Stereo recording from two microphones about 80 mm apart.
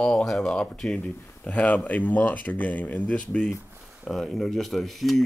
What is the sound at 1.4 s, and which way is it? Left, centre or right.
Speech, centre.